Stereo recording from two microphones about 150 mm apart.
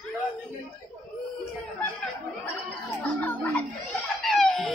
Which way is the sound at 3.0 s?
10° left (ahead or behind).